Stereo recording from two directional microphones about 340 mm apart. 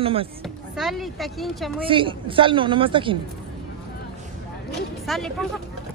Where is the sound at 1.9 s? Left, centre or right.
Centre.